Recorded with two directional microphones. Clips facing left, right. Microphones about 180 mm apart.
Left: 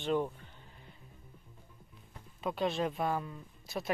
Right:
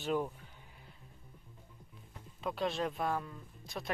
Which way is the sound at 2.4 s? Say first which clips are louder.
Left 2 dB; centre (ahead or behind).